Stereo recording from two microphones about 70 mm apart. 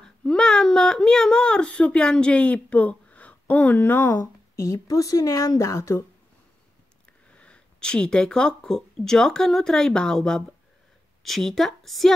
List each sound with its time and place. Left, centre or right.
0.2 s speech: centre; by 4.1 s left
4.1 s speech: left
7.2 s a woman's voice: centre